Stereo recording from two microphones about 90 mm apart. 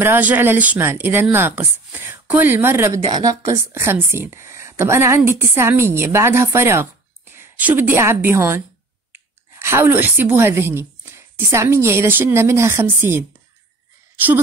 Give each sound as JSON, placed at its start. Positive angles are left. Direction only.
{"t": 0.0, "sound": "a woman's voice", "side_deg": -20}
{"t": 3.1, "sound": "a woman's voice", "side_deg": -45}
{"t": 3.7, "sound": "a woman's voice", "side_deg": -25}